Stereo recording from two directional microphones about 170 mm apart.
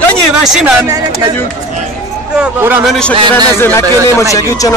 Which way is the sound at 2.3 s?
10° right (ahead or behind).